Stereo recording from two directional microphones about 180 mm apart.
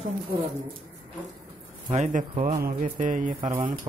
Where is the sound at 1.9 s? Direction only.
45° right (ahead or behind).